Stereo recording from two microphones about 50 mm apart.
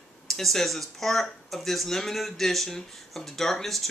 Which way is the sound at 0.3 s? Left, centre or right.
Centre.